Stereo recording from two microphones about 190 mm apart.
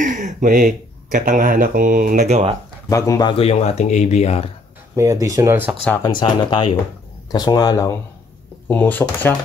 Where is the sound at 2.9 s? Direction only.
15° left (ahead or behind); by 4.5 s 35° left (ahead or behind).